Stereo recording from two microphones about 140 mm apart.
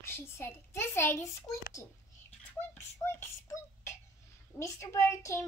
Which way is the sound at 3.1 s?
20° left (ahead or behind).